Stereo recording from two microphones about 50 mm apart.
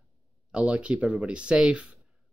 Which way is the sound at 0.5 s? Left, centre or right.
Right.